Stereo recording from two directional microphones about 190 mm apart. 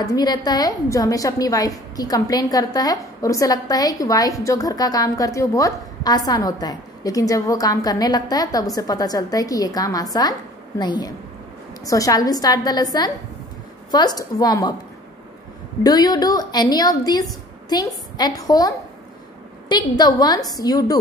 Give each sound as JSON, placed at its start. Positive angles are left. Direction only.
{"t": 0.0, "sound": "a woman's voice", "side_deg": 20}
{"t": 15.8, "sound": "a woman's voice", "side_deg": 20}
{"t": 19.7, "sound": "a woman's voice", "side_deg": 20}